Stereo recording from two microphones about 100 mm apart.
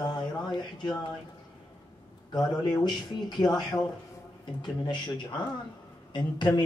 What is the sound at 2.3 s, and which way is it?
Speech, 45° left (ahead or behind).